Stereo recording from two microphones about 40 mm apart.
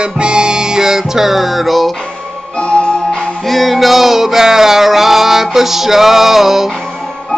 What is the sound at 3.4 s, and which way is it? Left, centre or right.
Music, centre.